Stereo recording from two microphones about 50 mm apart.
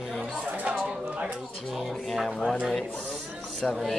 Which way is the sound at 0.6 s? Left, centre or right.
Right.